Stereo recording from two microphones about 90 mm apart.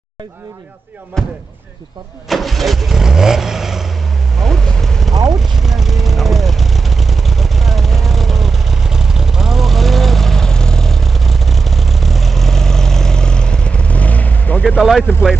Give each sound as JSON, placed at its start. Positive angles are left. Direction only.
{"t": 1.2, "sound": "vehicle", "side_deg": 5}
{"t": 14.6, "sound": "vehicle", "side_deg": 0}